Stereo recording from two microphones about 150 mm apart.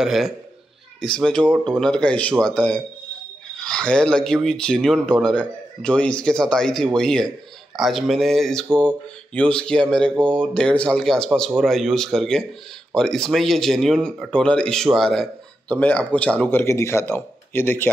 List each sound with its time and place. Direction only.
0.0 s speech: centre (ahead or behind); by 17.8 s 15° left (ahead or behind)